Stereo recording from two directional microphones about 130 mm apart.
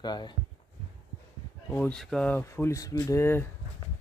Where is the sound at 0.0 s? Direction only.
35° left (ahead or behind).